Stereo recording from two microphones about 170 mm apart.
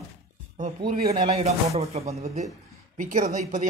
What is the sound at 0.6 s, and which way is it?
Speech, 45° right (ahead or behind).